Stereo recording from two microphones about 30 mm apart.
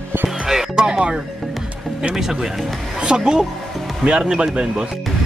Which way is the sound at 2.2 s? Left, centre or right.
Centre.